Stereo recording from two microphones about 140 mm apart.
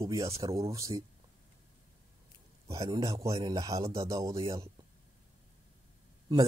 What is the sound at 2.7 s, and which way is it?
Speech, 25° right (ahead or behind).